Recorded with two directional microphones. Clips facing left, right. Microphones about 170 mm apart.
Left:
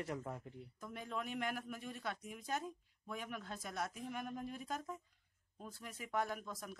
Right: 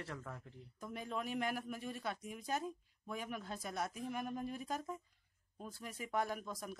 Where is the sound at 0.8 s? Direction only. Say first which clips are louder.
Right 2 dB; 10° right (ahead or behind).